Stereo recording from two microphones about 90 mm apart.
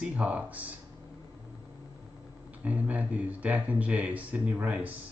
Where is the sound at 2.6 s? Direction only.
15° right (ahead or behind).